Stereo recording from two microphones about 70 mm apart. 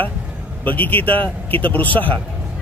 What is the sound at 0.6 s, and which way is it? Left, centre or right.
Speech, left.